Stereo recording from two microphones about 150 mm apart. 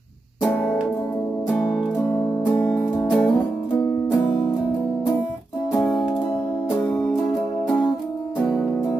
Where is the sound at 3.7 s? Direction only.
25° left (ahead or behind).